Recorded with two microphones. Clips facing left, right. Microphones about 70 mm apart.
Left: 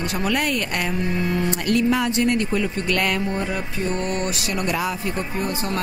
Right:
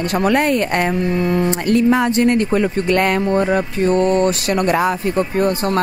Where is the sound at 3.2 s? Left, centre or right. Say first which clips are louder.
Right 9 dB; right.